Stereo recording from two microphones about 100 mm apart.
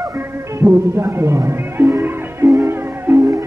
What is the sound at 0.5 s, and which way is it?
Music, 25° right (ahead or behind).